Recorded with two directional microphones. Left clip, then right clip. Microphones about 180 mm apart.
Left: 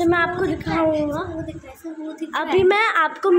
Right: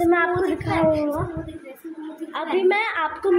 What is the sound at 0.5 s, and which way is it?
Speech, 10° left (ahead or behind).